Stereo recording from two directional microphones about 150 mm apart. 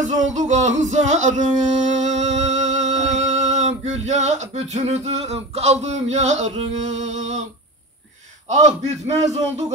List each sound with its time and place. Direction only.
0.0 s singing: 50° right (ahead or behind)
6.5 s a man's voice: 45° right (ahead or behind)
8.5 s a man's voice: 50° right (ahead or behind)